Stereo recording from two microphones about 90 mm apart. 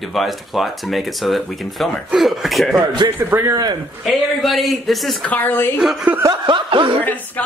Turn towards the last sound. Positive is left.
turn(degrees=-65)  # may be behind; listen again after turning